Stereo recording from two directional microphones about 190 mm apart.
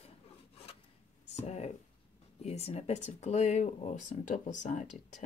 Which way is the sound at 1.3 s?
35° left (ahead or behind).